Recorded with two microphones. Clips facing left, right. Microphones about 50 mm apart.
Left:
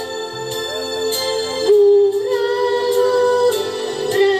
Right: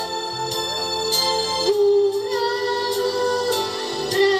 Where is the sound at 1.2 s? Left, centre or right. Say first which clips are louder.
Left 2 dB; centre.